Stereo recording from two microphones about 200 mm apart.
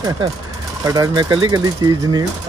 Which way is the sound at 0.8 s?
20° right (ahead or behind).